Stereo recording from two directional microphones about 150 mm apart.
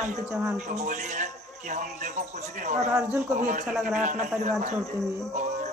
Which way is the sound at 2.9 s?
15° right (ahead or behind).